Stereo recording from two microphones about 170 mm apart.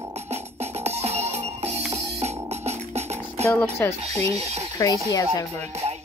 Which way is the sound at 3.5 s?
15° left (ahead or behind).